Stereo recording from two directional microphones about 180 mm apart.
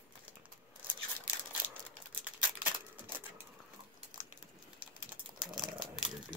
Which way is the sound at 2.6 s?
10° right (ahead or behind).